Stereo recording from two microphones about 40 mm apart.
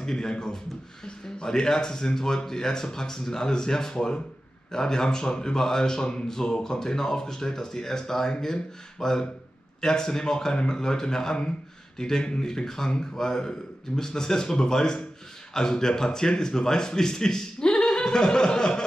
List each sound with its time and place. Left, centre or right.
0.0 s speech: centre